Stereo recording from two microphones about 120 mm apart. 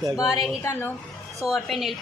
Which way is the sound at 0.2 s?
30° left (ahead or behind).